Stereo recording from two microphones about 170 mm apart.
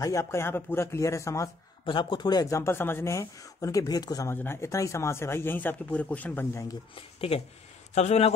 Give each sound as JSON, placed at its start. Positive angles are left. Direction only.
{"t": 0.0, "sound": "speech", "side_deg": 15}
{"t": 1.9, "sound": "speech", "side_deg": 30}
{"t": 7.0, "sound": "speech", "side_deg": 35}